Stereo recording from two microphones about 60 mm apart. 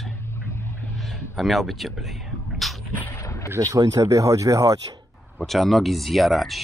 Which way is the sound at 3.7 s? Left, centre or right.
Right.